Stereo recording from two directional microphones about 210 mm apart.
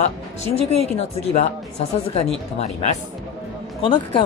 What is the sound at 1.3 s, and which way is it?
Speech, 30° left (ahead or behind).